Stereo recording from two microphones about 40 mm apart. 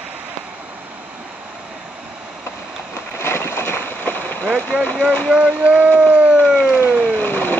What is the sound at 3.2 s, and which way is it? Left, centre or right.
Boat, left.